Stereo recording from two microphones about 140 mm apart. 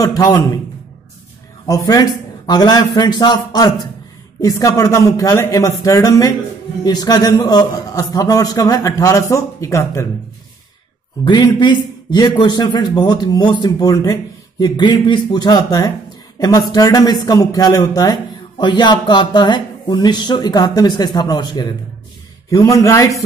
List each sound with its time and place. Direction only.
0.0 s a man's voice: 25° left (ahead or behind)
1.7 s a man's voice: 25° left (ahead or behind)
11.2 s a man's voice: 35° left (ahead or behind)